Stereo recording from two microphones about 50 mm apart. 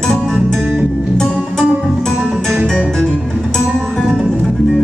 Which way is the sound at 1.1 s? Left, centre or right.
Centre.